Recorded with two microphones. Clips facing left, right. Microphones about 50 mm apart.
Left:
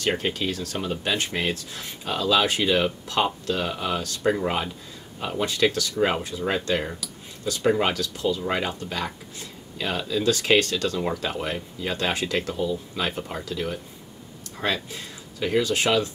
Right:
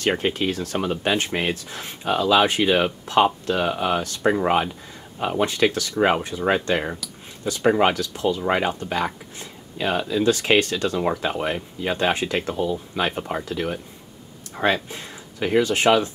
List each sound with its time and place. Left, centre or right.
0.0 s speech: right